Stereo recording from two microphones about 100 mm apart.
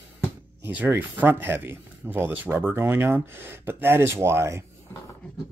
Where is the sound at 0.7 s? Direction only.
20° right (ahead or behind).